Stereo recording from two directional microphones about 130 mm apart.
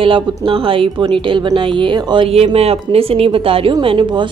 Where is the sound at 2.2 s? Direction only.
50° right (ahead or behind).